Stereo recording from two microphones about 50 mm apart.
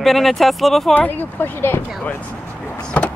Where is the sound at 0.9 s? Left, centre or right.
Left.